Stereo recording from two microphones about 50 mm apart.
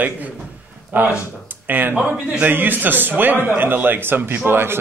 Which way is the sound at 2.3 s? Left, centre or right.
Right.